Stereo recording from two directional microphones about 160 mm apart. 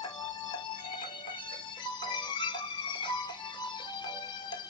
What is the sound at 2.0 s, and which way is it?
Music, 30° left (ahead or behind).